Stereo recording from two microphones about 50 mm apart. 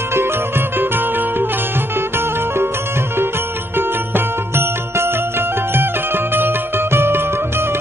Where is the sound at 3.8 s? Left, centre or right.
Right.